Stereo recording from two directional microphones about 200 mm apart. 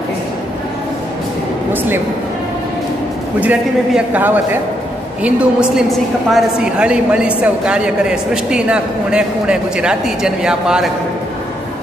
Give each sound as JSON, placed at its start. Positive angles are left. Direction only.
{"t": 3.3, "sound": "a man's voice", "side_deg": -5}